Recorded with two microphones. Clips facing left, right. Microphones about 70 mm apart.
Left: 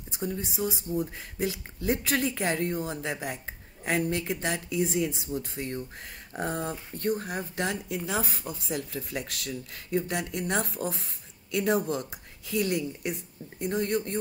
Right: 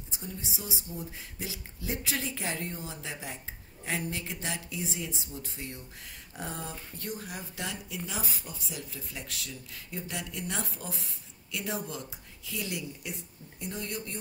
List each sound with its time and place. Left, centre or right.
0.1 s speech: left